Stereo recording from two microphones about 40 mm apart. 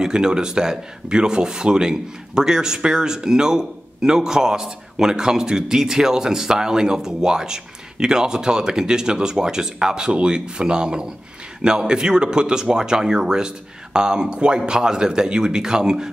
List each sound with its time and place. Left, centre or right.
0.0 s speech: centre